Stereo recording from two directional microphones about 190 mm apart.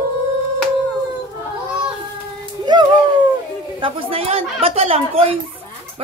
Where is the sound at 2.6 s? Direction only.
20° right (ahead or behind).